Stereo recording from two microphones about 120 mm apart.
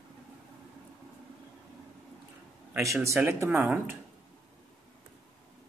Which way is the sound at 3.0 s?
20° right (ahead or behind).